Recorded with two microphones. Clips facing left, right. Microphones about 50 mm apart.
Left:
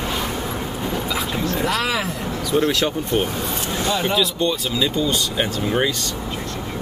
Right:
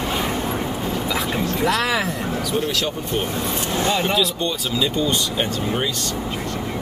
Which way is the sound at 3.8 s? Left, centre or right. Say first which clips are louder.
Even; right.